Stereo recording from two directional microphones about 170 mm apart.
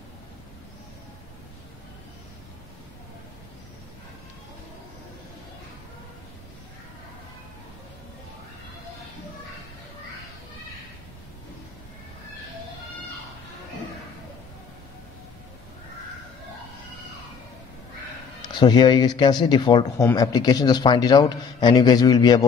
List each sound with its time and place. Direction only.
18.4 s a man's voice: 25° left (ahead or behind)